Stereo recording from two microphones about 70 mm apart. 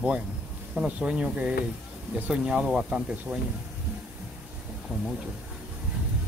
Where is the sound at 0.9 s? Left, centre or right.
Centre.